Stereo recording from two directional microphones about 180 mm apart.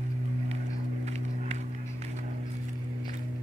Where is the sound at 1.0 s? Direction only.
40° right (ahead or behind).